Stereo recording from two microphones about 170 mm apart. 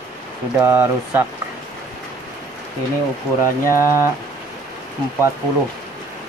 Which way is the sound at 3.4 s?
15° right (ahead or behind).